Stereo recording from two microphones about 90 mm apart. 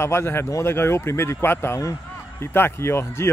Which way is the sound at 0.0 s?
30° left (ahead or behind).